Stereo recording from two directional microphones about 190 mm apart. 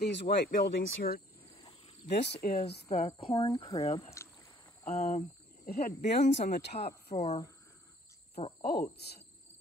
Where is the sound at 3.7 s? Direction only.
30° left (ahead or behind).